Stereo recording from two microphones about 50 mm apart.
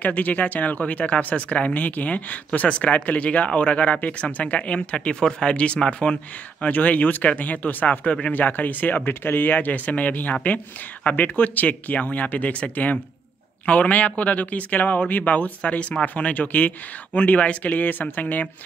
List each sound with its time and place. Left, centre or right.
0.0 s speech: left
8.3 s speech: left